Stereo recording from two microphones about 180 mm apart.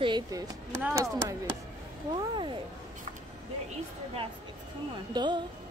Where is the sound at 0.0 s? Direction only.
20° right (ahead or behind).